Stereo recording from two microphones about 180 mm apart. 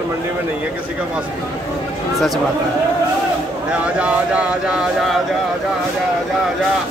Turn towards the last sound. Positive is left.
turn(degrees=-5)  # may be behind; listen again after turning